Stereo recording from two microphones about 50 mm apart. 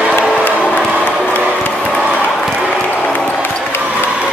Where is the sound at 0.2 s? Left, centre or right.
Right.